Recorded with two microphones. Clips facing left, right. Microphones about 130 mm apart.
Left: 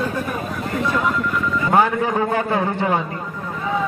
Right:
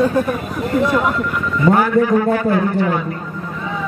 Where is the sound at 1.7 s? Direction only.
25° left (ahead or behind).